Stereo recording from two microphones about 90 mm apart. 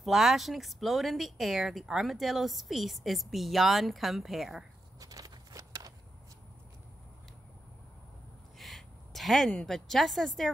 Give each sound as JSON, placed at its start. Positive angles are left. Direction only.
{"t": 0.0, "sound": "speech", "side_deg": -5}
{"t": 5.0, "sound": "a sound", "side_deg": -40}
{"t": 8.5, "sound": "a woman's voice", "side_deg": 0}